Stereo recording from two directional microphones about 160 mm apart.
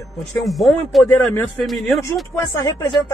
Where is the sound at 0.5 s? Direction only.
Centre (ahead or behind).